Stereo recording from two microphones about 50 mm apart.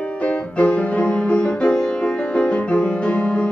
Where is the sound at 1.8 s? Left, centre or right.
Centre.